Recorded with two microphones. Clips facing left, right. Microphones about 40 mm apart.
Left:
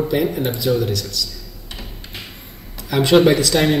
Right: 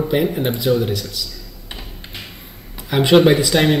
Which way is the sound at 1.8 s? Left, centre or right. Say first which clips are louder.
Left 3 dB; centre.